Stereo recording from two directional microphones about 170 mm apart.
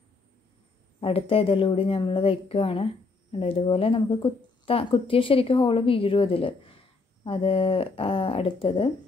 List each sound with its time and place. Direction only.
1.0 s a woman's voice: 35° left (ahead or behind)